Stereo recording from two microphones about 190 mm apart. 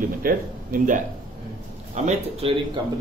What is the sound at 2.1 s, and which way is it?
Speech, 30° right (ahead or behind).